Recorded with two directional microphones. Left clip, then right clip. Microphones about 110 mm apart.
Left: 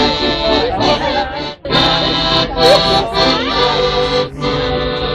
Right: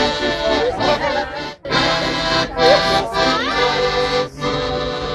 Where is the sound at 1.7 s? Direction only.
10° left (ahead or behind).